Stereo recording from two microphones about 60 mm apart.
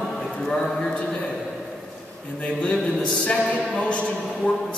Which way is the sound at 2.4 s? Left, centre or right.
Centre.